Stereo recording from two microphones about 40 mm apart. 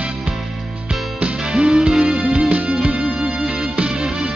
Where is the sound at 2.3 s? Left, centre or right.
Right.